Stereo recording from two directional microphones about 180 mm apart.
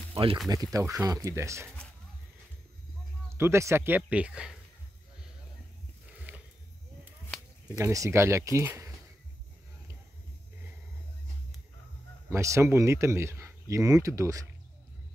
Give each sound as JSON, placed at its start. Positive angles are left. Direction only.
{"t": 0.1, "sound": "a sound", "side_deg": -30}
{"t": 0.5, "sound": "speech", "side_deg": -20}
{"t": 3.3, "sound": "speech", "side_deg": -15}
{"t": 6.3, "sound": "a sound", "side_deg": -10}
{"t": 7.8, "sound": "speech", "side_deg": -15}
{"t": 12.3, "sound": "speech", "side_deg": -15}